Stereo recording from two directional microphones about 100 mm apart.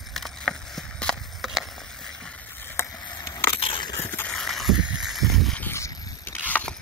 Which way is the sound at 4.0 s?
20° left (ahead or behind).